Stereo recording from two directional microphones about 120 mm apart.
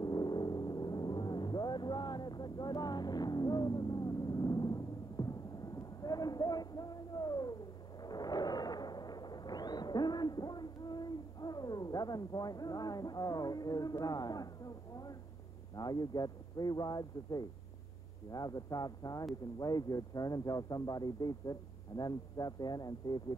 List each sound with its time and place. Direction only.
0.0 s vehicle: 35° left (ahead or behind)
8.0 s a sound: 35° left (ahead or behind)
15.7 s speech: 35° left (ahead or behind)